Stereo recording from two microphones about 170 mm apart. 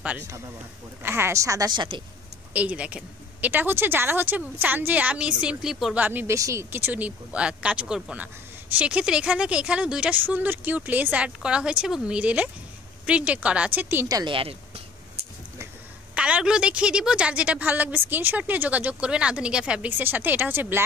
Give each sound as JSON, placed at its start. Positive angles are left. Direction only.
{"t": 0.0, "sound": "a woman's voice", "side_deg": -10}
{"t": 2.5, "sound": "a woman's voice", "side_deg": -10}
{"t": 16.2, "sound": "a woman's voice", "side_deg": -5}